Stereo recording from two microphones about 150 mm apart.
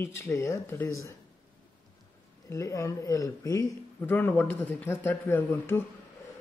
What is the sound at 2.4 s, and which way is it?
Speech, 20° left (ahead or behind).